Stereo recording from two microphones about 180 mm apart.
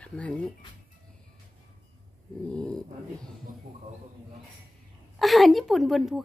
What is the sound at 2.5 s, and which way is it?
Dog, 5° left (ahead or behind).